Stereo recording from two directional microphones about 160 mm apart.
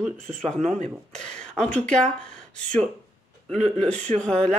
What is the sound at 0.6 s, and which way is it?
Speech, 45° right (ahead or behind).